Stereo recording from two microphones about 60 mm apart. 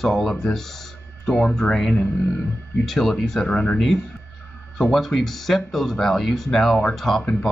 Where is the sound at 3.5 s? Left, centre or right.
Centre.